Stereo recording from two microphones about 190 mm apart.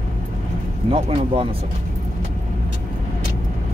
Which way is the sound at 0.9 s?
30° right (ahead or behind).